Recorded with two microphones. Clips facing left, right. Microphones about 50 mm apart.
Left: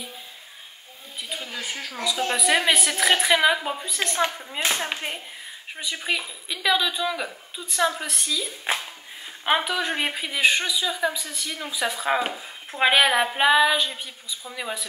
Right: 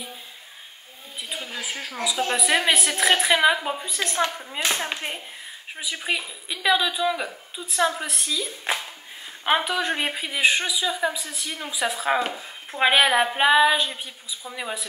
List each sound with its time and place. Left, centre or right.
1.3 s speech: centre